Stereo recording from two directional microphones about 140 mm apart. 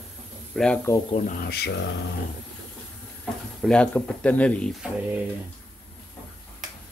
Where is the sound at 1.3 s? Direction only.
90° left.